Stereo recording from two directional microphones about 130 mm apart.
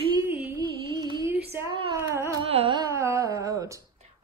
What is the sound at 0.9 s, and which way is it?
Music, 40° right (ahead or behind).